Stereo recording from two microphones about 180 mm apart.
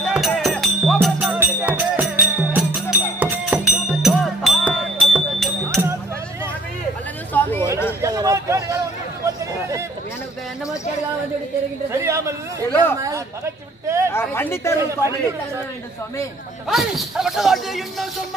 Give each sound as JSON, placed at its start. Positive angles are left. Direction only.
{"t": 0.0, "sound": "music", "side_deg": 0}
{"t": 8.0, "sound": "a sound", "side_deg": -20}
{"t": 9.2, "sound": "chatter", "side_deg": -15}
{"t": 11.9, "sound": "speech", "side_deg": -15}
{"t": 13.8, "sound": "speech", "side_deg": -15}
{"t": 14.1, "sound": "speech", "side_deg": 10}
{"t": 14.8, "sound": "speech", "side_deg": -15}
{"t": 16.6, "sound": "speech", "side_deg": 0}